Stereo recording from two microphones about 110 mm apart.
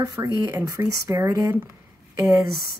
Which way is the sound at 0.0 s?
35° right (ahead or behind).